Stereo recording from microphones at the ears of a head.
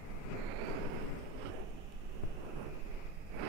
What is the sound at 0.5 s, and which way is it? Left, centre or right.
Vehicle, right.